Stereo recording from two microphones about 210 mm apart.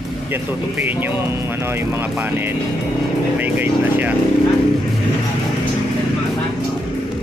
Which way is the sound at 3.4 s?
10° right (ahead or behind).